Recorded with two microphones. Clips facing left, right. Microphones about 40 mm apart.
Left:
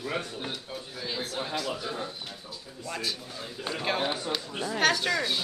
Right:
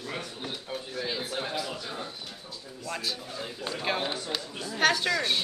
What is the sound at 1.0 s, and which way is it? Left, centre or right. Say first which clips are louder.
Speech: left 1 dB; centre.